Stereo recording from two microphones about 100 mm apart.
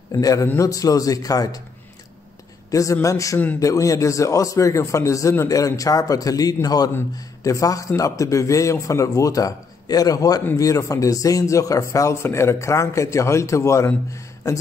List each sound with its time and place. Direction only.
0.1 s speech: 35° left (ahead or behind)
2.7 s speech: 35° left (ahead or behind)